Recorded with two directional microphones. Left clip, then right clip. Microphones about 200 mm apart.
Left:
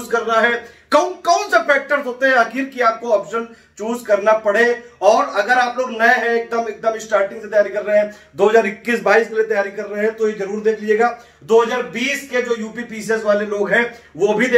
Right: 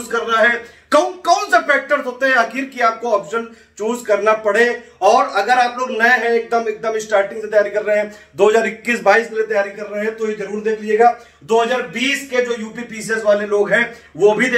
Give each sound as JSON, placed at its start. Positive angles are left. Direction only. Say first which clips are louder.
{"t": 0.1, "sound": "a man's voice", "louder": "right 1 dB", "side_deg": 5}
{"t": 2.1, "sound": "a man's voice", "louder": "left 2 dB", "side_deg": -10}
{"t": 9.5, "sound": "a man's voice", "louder": "right 1 dB", "side_deg": 15}
{"t": 12.9, "sound": "a man's voice", "louder": "right 1 dB", "side_deg": 10}